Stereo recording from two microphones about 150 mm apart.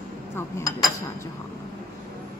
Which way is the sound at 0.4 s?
15° left (ahead or behind).